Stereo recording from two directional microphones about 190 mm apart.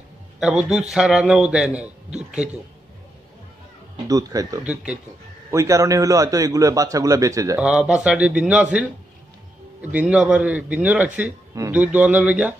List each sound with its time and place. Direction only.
0.4 s a man's voice: 5° right (ahead or behind)
3.9 s a man's voice: 20° right (ahead or behind)
7.6 s a man's voice: 5° right (ahead or behind)